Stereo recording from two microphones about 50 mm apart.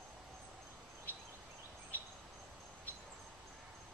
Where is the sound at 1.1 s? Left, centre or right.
Right.